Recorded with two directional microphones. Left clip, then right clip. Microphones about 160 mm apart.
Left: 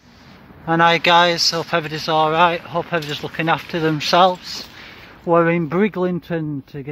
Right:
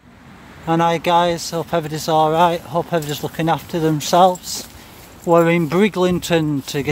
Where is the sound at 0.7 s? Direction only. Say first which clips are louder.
Left 2 dB; 15° right (ahead or behind); by 3.4 s 35° right (ahead or behind).